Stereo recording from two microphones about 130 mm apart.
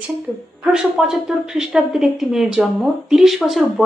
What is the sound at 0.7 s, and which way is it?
Speech, 5° right (ahead or behind).